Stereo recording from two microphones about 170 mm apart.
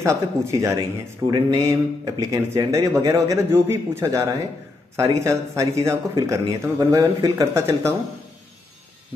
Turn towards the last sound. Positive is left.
turn(degrees=-15)  # may be behind; listen again after turning